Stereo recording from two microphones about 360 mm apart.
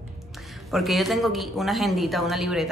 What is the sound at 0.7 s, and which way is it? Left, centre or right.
A woman's voice, centre.